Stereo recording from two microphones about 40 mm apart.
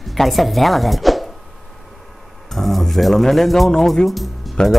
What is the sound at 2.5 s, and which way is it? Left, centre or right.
Speech, centre.